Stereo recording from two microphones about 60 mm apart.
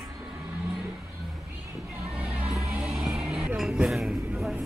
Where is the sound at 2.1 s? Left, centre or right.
Right.